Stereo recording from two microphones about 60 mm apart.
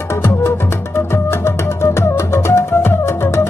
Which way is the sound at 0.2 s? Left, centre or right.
Left.